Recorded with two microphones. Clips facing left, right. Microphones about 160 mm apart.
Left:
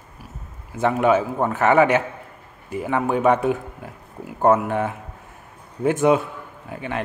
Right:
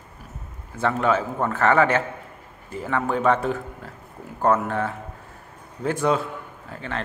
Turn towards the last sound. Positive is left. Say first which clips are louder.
# left 3 dB
turn(degrees=15)  # may be behind; listen again after turning